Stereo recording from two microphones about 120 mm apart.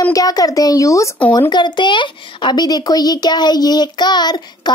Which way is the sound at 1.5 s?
40° left (ahead or behind).